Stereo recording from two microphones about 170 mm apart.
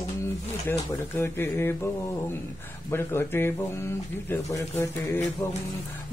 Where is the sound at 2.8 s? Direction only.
15° left (ahead or behind).